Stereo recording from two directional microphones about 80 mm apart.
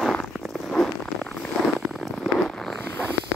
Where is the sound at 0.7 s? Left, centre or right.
Centre.